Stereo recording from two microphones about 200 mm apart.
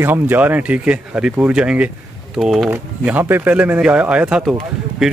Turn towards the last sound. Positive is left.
turn(degrees=0)  # may be behind; listen again after turning